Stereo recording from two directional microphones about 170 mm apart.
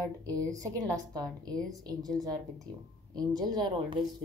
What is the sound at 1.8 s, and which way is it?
A woman's voice, 20° right (ahead or behind).